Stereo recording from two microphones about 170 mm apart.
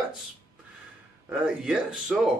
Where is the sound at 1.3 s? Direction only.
5° right (ahead or behind).